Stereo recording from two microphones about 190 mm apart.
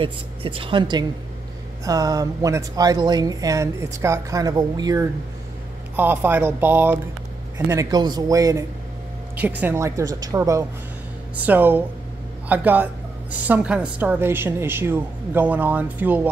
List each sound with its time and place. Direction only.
0.0 s speech: 30° right (ahead or behind)
5.9 s a woman's voice: 10° right (ahead or behind)